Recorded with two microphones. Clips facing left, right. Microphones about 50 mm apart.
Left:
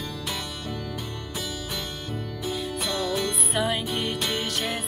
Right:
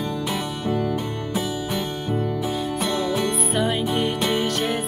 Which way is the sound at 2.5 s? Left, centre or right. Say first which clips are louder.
Right 5 dB; centre.